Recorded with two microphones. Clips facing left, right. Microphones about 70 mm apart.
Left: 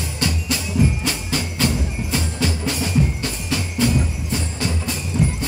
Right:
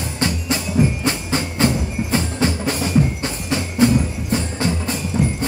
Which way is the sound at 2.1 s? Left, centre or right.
Right.